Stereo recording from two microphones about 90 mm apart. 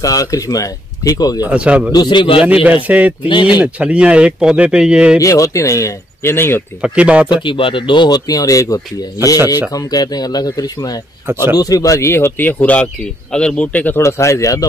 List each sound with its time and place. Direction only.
0.0 s speech: 40° left (ahead or behind)
1.4 s speech: 15° right (ahead or behind)
1.9 s a man's voice: 55° left (ahead or behind); by 2.4 s 70° left (ahead or behind)
2.4 s speech: 15° right (ahead or behind)
5.2 s speech: 35° left (ahead or behind)
6.8 s speech: 15° right (ahead or behind)
7.4 s speech: 70° left (ahead or behind); by 14.0 s 20° left (ahead or behind)
14.0 s speech: 35° left (ahead or behind)